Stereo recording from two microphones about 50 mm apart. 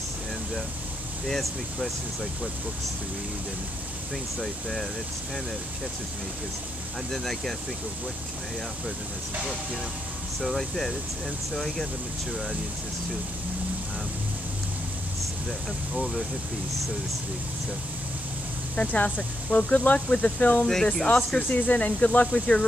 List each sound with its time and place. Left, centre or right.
1.2 s speech: centre
4.4 s speech: centre
7.1 s speech: centre
10.4 s speech: centre
15.9 s speech: centre
18.9 s speech: left
20.6 s speech: centre
21.4 s speech: left